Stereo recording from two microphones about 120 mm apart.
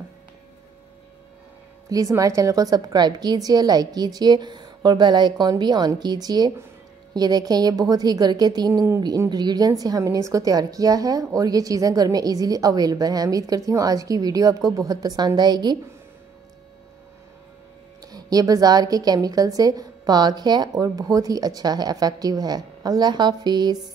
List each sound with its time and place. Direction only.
1.9 s a woman's voice: 30° right (ahead or behind)
18.0 s a woman's voice: 30° right (ahead or behind)